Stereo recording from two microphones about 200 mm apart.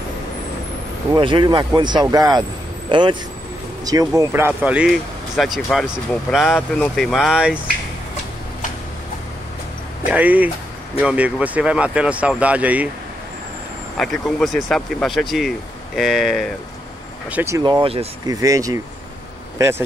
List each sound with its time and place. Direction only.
1.1 s speech: 25° right (ahead or behind); by 7.6 s 5° right (ahead or behind)
10.1 s speech: 10° right (ahead or behind)
13.9 s speech: centre (ahead or behind)
17.3 s speech: 10° right (ahead or behind)